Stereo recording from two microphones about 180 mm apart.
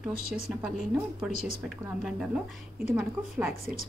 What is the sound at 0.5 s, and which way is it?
Speech, 5° right (ahead or behind).